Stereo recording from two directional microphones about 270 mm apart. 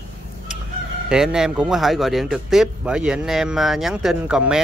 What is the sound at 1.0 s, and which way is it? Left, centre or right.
Speech, centre.